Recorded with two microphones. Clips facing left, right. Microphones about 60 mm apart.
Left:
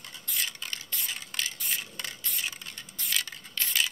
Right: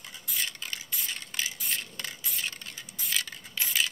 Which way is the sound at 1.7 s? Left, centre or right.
Centre.